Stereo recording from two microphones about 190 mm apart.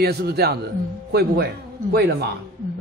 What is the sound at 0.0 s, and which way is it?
A man's voice, 60° right (ahead or behind).